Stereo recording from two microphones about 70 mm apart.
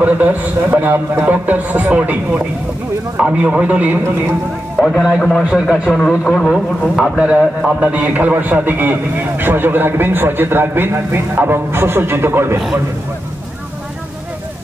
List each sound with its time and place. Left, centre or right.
0.0 s a man's voice: right
4.7 s a man's voice: centre
7.0 s a man's voice: centre; by 12.5 s right